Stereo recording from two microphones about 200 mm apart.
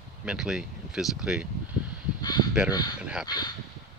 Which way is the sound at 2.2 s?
20° left (ahead or behind).